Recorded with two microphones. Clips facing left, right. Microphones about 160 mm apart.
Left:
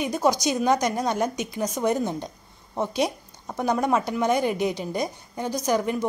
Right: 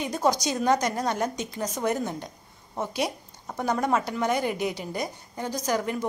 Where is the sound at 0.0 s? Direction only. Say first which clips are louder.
Left 2 dB; 10° left (ahead or behind).